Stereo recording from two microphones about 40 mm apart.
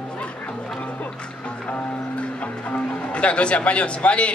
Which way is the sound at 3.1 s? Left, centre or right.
Left.